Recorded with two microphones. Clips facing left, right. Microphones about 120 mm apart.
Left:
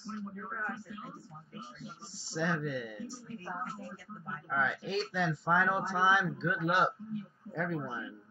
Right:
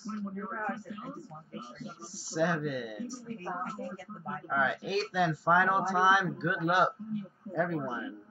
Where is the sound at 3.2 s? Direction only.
45° right (ahead or behind).